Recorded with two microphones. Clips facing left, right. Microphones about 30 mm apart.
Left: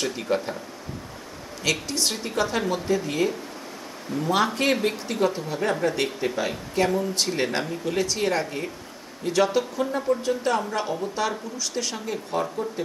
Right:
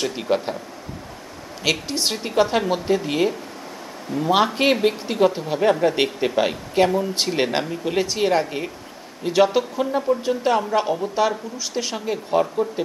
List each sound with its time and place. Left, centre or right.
0.3 s speech: right
1.6 s speech: right
5.9 s speech: right